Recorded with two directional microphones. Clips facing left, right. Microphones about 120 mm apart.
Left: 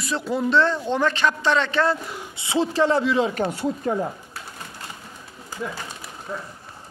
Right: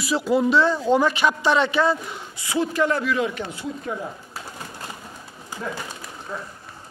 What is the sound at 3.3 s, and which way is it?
Speech, 45° left (ahead or behind).